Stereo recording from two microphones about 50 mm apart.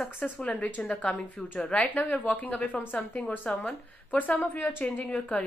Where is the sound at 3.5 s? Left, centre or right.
Centre.